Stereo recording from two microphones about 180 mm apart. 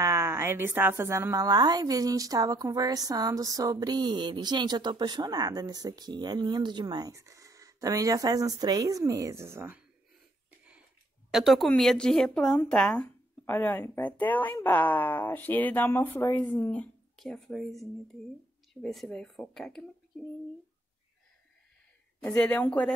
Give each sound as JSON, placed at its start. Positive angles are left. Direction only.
{"t": 0.0, "sound": "a woman's voice", "side_deg": -15}
{"t": 11.2, "sound": "speech", "side_deg": 0}
{"t": 22.2, "sound": "speech", "side_deg": 10}